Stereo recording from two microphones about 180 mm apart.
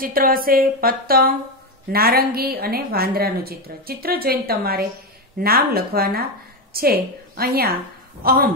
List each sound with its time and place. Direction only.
0.0 s a woman's voice: 55° right (ahead or behind)